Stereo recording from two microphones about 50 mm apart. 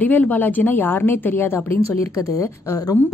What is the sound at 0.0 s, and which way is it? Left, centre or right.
A woman's voice, left.